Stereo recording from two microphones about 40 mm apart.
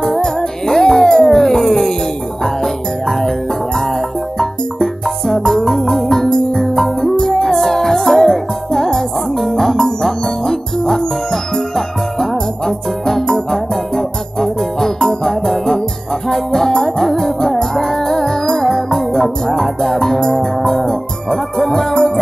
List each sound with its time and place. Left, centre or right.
0.2 s music: centre
1.0 s a sound: centre
2.4 s music: centre